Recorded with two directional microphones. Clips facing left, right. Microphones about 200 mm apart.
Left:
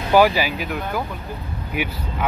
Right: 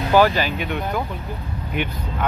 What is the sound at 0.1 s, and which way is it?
Speech, 10° left (ahead or behind).